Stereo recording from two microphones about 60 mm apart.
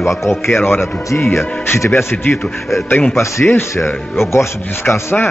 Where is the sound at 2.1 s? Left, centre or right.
Left.